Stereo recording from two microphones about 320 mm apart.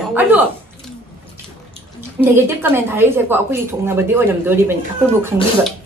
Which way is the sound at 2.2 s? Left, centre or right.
Centre.